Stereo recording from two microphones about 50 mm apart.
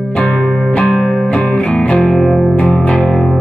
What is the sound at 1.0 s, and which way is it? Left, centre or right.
Music, centre.